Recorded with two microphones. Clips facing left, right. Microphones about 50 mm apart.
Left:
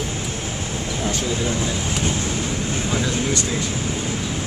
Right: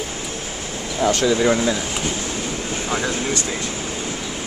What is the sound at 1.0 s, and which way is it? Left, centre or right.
Speech, right.